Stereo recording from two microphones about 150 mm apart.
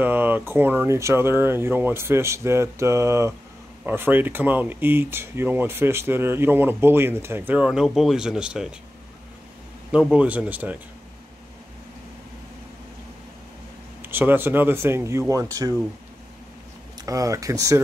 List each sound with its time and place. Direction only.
0.0 s speech: 10° right (ahead or behind)
9.9 s speech: 5° right (ahead or behind)
14.0 s speech: 15° right (ahead or behind)
17.0 s speech: 20° right (ahead or behind)